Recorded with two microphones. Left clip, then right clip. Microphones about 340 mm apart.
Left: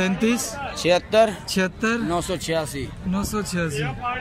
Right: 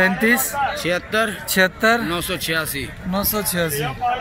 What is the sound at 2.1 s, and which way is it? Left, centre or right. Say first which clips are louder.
Speech: right 1 dB; left.